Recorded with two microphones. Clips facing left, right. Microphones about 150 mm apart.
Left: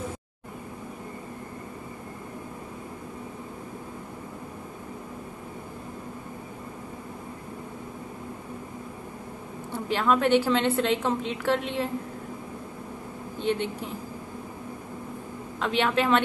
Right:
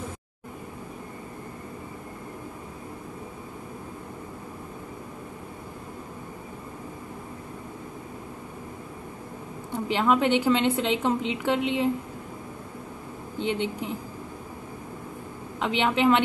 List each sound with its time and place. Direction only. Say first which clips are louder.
9.8 s a woman's voice: even; 15° right (ahead or behind)
13.4 s speech: even; 15° right (ahead or behind)
15.6 s a woman's voice: right 2 dB; 15° right (ahead or behind)